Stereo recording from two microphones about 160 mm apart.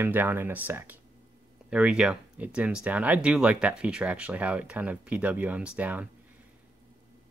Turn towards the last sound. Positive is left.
turn(degrees=-10)  # may be behind; listen again after turning